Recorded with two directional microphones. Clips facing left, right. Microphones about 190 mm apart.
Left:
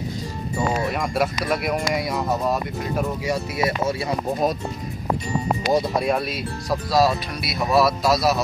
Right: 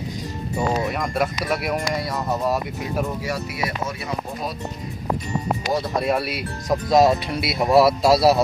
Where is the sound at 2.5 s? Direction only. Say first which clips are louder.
Even; 5° right (ahead or behind).